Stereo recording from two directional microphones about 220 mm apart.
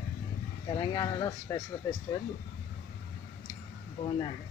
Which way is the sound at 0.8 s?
15° left (ahead or behind).